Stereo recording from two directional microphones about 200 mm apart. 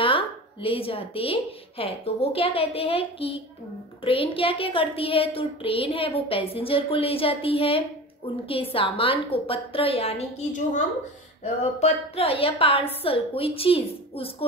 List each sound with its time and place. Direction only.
0.0 s a child's voice: 25° left (ahead or behind)